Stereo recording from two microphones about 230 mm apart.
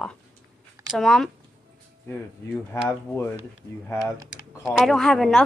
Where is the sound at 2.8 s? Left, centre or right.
Centre.